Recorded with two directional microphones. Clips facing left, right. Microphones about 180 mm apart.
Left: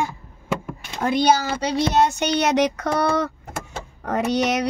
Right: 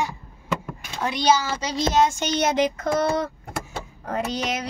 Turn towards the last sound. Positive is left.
turn(degrees=70)  # may be behind; listen again after turning